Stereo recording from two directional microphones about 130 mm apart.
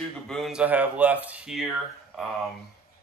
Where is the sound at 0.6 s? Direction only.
10° right (ahead or behind).